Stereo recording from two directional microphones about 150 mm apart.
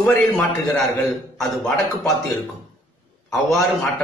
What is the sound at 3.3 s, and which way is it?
Speech, centre (ahead or behind).